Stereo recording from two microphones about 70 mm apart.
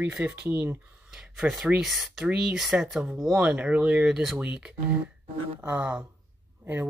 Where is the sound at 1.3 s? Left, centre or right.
Centre.